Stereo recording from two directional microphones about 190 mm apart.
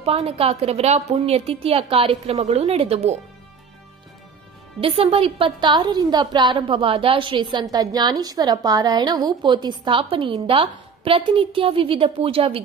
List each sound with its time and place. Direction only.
0.0 s a woman's voice: 30° right (ahead or behind)
4.7 s a woman's voice: 30° right (ahead or behind)